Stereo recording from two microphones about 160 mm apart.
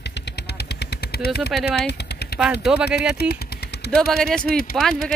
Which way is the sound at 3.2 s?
85° left.